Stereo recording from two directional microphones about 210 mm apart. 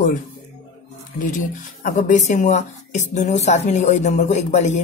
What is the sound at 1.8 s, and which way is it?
A woman's voice, 40° left (ahead or behind).